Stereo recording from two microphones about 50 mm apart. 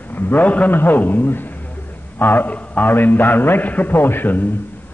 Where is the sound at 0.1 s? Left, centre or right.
Left.